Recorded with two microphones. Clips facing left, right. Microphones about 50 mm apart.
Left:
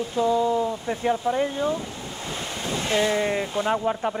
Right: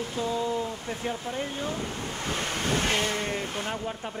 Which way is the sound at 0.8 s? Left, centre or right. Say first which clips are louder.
Left 8 dB; left.